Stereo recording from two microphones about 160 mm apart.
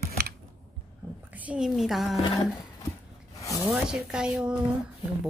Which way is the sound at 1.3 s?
5° right (ahead or behind).